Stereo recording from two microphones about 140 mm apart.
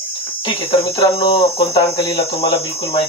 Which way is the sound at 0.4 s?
40° left (ahead or behind).